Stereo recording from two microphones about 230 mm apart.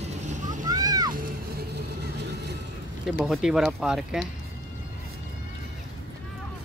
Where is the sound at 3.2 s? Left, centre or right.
Centre.